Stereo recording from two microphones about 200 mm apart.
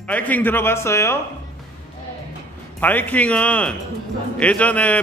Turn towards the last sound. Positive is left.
turn(degrees=5)  # may be behind; listen again after turning